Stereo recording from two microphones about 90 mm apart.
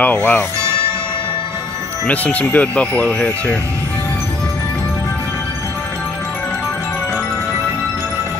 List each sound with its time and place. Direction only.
0.0 s speech: 15° left (ahead or behind)
2.0 s speech: 15° left (ahead or behind)